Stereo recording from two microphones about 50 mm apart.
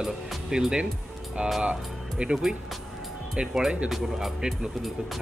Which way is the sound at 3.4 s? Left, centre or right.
Centre.